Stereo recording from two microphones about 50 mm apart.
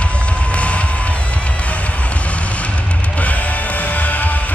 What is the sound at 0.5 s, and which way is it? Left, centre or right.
Music, left.